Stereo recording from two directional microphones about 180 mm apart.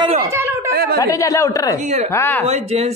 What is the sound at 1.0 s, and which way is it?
Speech, 20° left (ahead or behind).